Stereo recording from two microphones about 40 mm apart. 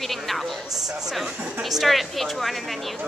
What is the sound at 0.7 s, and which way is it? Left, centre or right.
Speech, centre.